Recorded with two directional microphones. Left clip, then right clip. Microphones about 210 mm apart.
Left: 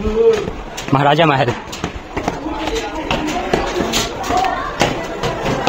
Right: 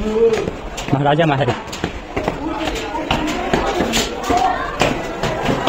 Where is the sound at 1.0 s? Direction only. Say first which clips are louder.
Left 3 dB; 30° left (ahead or behind).